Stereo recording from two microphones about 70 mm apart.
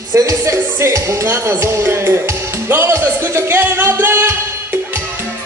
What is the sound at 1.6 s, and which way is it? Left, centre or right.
Music, right.